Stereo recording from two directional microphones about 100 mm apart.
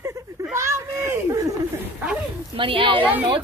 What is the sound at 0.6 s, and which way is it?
Children playing, 30° right (ahead or behind).